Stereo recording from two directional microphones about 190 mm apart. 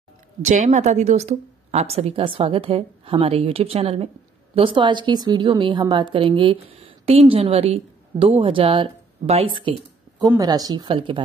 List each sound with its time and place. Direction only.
0.4 s a woman's voice: 40° right (ahead or behind)